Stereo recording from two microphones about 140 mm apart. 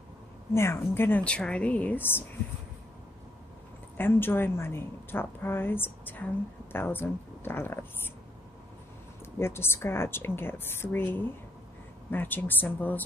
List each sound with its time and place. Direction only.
0.6 s a woman's voice: 20° left (ahead or behind)
3.9 s a woman's voice: 15° left (ahead or behind)
9.2 s a woman's voice: 15° left (ahead or behind)